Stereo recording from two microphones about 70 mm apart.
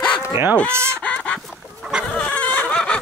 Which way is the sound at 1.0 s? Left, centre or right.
Centre.